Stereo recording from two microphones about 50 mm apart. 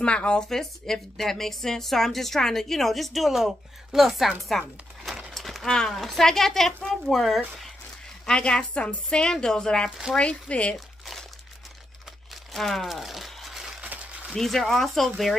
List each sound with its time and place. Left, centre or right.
0.0 s speech: left
0.5 s a woman's voice: centre
5.3 s horse: centre
5.7 s a woman's voice: centre
8.3 s a woman's voice: centre
9.8 s speech: centre
10.1 s speech: left
12.5 s crumpling: centre
13.8 s a sound: right
14.3 s a woman's voice: centre